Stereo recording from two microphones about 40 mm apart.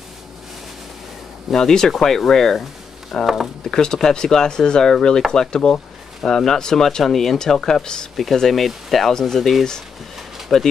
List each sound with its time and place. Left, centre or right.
1.5 s speech: centre
8.4 s speech: centre